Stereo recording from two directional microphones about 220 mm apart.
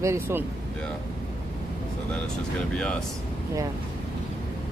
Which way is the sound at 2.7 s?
5° left (ahead or behind).